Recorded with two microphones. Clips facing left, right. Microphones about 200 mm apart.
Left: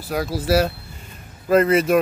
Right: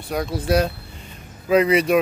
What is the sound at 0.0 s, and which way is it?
Speech, 5° left (ahead or behind).